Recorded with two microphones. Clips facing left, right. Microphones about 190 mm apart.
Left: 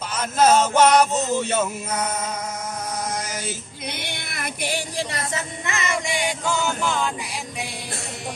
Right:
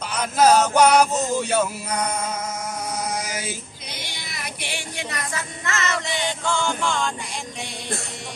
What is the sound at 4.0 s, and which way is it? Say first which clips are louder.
Music: left 4 dB; 55° left (ahead or behind).